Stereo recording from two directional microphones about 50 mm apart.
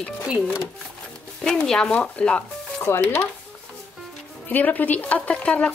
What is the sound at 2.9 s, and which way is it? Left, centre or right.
Speech, left.